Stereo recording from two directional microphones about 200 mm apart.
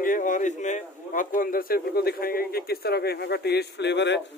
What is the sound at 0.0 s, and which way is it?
A man's voice, 40° left (ahead or behind).